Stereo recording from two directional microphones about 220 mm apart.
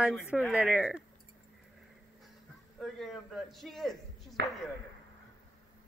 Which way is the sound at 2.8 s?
Centre (ahead or behind).